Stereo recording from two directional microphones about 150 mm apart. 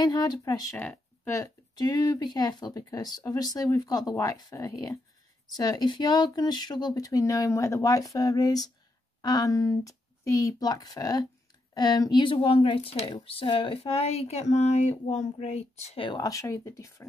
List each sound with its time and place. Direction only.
0.0 s speech: 25° left (ahead or behind); by 16.0 s 45° left (ahead or behind)
16.0 s speech: 25° left (ahead or behind)